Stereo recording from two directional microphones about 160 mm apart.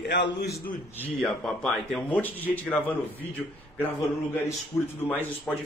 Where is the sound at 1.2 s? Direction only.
5° left (ahead or behind).